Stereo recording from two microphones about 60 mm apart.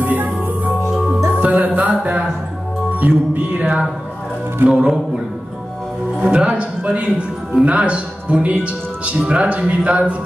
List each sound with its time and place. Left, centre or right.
0.0 s music: right
3.0 s speech: right